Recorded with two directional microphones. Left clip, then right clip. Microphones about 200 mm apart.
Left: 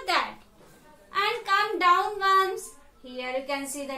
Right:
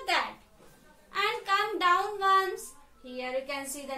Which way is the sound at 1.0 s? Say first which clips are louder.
Left 3 dB; 15° left (ahead or behind).